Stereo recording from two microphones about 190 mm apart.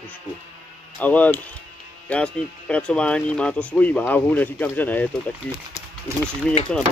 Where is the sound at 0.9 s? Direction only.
10° left (ahead or behind).